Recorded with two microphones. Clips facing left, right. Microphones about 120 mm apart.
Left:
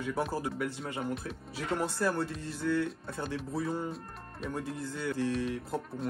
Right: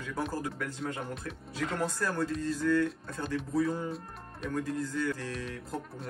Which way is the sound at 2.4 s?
50° right (ahead or behind).